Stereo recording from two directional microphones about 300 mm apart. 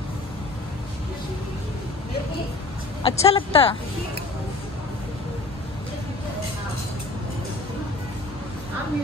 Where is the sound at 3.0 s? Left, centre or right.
Centre.